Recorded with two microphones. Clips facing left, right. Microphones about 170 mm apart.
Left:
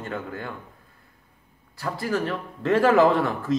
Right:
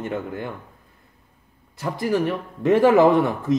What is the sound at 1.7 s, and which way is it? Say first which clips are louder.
Speech: right 4 dB; 20° right (ahead or behind).